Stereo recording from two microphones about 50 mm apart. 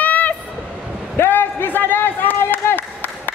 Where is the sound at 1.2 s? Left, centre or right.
Left.